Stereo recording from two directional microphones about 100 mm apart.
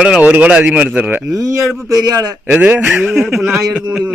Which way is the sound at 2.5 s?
20° right (ahead or behind).